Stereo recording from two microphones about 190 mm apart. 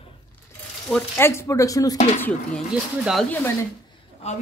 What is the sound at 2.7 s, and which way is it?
Speech, centre (ahead or behind).